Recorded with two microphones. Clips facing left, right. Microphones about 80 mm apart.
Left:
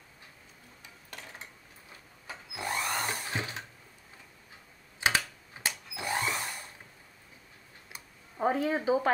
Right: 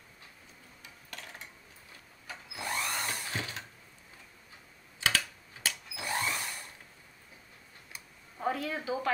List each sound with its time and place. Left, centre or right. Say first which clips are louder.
2.2 s drill: left 2 dB; left
5.0 s tools: left 3 dB; centre
7.9 s clicking: left 1 dB; left
8.6 s speech: left 6 dB; left